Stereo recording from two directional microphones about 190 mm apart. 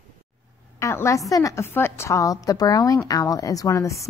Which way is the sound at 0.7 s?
15° left (ahead or behind).